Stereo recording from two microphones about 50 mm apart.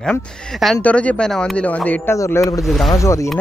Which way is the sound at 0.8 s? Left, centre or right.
Left.